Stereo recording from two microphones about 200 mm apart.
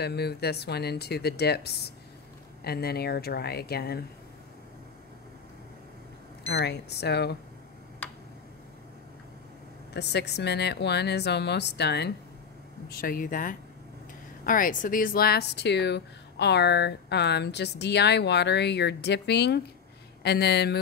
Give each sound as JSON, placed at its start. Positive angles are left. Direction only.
{"t": 0.0, "sound": "speech", "side_deg": 55}
{"t": 6.5, "sound": "speech", "side_deg": 55}
{"t": 9.9, "sound": "speech", "side_deg": 55}